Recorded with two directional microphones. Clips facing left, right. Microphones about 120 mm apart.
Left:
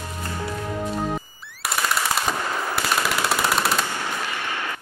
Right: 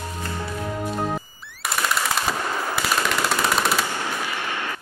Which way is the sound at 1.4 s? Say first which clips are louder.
Even; centre (ahead or behind).